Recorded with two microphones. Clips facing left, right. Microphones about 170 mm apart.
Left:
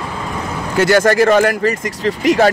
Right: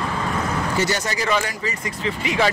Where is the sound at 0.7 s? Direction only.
55° left (ahead or behind).